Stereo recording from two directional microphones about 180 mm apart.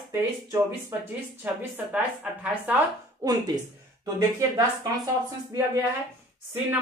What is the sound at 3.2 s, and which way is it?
Speech, 20° right (ahead or behind).